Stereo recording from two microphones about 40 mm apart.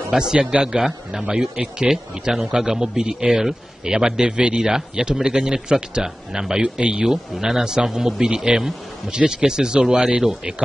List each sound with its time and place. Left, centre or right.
0.4 s speech: right
0.7 s a man's voice: centre